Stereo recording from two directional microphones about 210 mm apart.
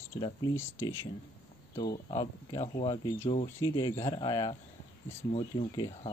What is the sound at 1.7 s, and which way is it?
Speech, 25° left (ahead or behind).